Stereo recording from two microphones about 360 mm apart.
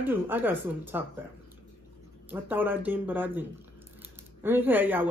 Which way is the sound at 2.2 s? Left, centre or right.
Centre.